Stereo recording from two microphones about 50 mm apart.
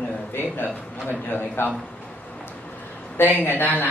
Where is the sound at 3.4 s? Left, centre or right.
Left.